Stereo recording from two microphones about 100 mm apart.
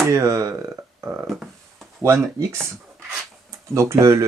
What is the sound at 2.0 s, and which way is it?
Speech, 25° right (ahead or behind).